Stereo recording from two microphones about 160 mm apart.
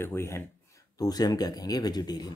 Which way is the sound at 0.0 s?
15° left (ahead or behind).